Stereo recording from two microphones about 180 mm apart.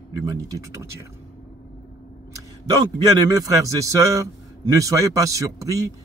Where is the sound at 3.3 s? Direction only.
20° right (ahead or behind).